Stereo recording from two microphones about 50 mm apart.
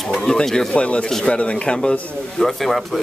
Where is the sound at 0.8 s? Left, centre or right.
Left.